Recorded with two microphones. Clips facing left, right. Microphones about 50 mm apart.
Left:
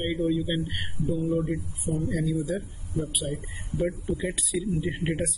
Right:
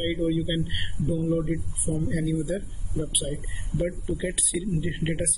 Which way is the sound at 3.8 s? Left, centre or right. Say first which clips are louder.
Even; right.